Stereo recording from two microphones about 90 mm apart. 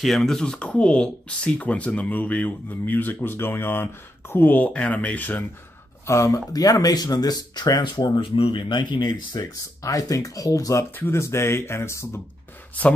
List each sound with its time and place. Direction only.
0.0 s speech: centre (ahead or behind); by 5.4 s 20° left (ahead or behind)
6.0 s speech: 35° left (ahead or behind)
12.8 s speech: 15° left (ahead or behind)